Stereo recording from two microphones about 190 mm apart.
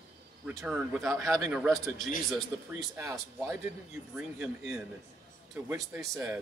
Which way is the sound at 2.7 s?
15° right (ahead or behind).